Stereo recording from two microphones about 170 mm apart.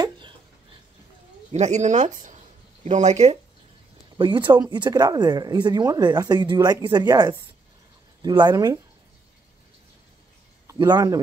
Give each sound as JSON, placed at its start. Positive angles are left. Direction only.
{"t": 1.5, "sound": "speech", "side_deg": -40}
{"t": 4.2, "sound": "speech", "side_deg": -25}
{"t": 10.7, "sound": "speech", "side_deg": -20}